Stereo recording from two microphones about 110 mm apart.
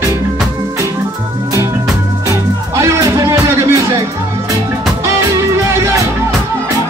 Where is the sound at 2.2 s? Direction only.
25° right (ahead or behind).